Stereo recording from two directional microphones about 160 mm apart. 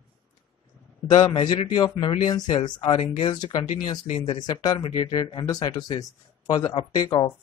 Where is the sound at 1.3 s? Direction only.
30° left (ahead or behind).